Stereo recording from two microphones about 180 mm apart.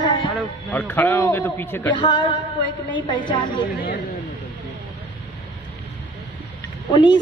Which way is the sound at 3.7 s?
55° left (ahead or behind).